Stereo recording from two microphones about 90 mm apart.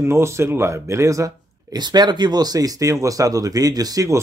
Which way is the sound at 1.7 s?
55° right (ahead or behind).